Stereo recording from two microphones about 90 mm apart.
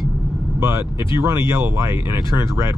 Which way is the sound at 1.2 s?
30° right (ahead or behind).